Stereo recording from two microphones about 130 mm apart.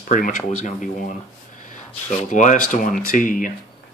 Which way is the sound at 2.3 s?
70° left (ahead or behind).